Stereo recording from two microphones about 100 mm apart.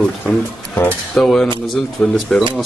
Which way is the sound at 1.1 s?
5° left (ahead or behind).